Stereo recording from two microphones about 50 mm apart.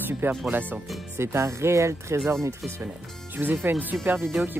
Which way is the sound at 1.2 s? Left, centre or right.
Right.